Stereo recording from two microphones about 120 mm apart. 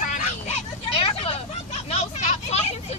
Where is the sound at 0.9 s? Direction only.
50° left (ahead or behind).